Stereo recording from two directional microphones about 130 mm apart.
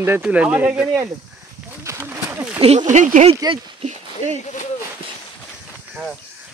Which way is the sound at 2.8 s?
75° right (ahead or behind).